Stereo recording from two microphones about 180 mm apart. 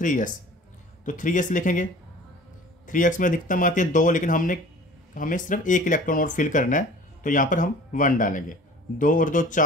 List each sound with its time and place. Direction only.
0.0 s speech: 45° left (ahead or behind)
2.9 s speech: 45° left (ahead or behind)